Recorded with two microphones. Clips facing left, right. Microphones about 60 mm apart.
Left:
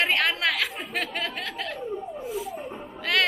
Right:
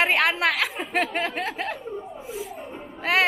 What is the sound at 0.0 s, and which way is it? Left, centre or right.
A child's voice, centre.